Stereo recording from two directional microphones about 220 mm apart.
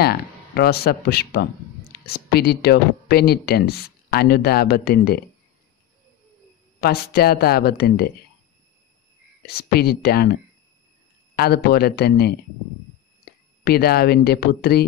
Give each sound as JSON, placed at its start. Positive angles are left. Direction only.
{"t": 0.0, "sound": "speech", "side_deg": 45}
{"t": 6.8, "sound": "speech", "side_deg": 45}
{"t": 9.5, "sound": "speech", "side_deg": 45}
{"t": 11.3, "sound": "speech", "side_deg": 45}